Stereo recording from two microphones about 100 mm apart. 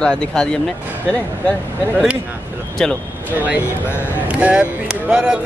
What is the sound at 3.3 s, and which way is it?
Speech, 15° right (ahead or behind).